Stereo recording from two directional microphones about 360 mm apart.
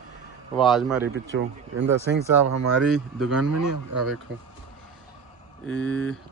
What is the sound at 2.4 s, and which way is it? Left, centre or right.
Speech, right.